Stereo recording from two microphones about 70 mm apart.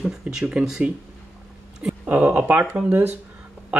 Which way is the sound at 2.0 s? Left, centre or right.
Right.